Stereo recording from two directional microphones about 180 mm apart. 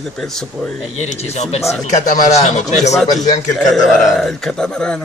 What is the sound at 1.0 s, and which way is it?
Speech, 40° left (ahead or behind).